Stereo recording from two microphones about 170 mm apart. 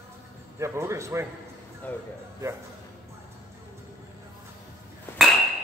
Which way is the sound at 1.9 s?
10° left (ahead or behind).